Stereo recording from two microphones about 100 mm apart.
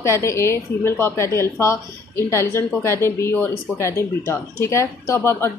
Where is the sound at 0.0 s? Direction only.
30° left (ahead or behind).